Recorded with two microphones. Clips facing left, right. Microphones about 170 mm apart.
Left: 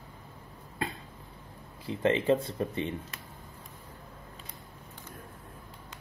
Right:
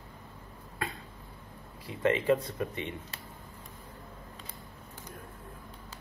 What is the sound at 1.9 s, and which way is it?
Speech, 30° left (ahead or behind).